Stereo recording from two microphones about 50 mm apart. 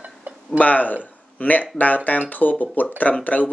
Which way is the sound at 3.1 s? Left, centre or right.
Left.